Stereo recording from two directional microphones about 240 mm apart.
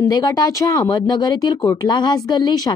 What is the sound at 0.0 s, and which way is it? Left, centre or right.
Speech, centre.